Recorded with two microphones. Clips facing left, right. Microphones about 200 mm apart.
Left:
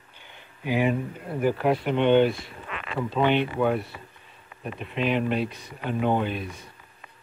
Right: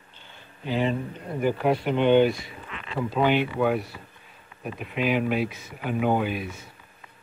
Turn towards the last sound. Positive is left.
turn(degrees=-5)  # may be behind; listen again after turning